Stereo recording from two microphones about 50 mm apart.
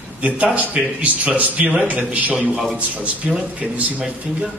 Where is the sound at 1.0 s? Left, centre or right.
Right.